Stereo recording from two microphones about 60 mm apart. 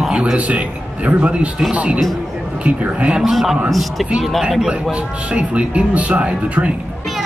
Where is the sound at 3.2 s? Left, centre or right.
Centre.